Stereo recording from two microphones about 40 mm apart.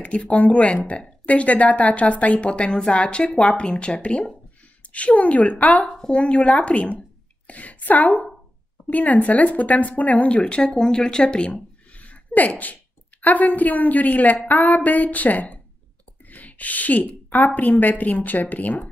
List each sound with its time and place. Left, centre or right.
0.3 s a woman's voice: left
4.8 s speech: left
5.9 s speech: left
10.6 s a woman's voice: centre
11.9 s a sound: left
13.2 s a woman's voice: left
16.3 s a sound: left
17.6 s a woman's voice: left